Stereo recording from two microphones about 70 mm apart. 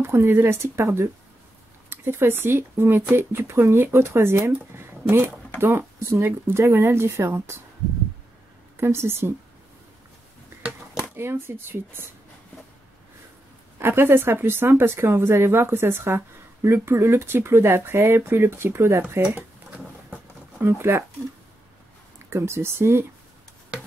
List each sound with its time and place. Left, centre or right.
0.0 s speech: right
4.7 s a sound: right
5.6 s speech: right
8.7 s speech: right
11.1 s speech: right
13.7 s speech: right
19.2 s a sound: centre
20.6 s speech: right
22.3 s speech: right